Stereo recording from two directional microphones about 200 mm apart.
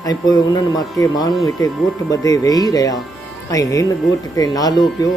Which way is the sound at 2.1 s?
15° left (ahead or behind).